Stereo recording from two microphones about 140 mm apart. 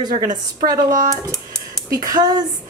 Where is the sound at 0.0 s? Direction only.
30° right (ahead or behind).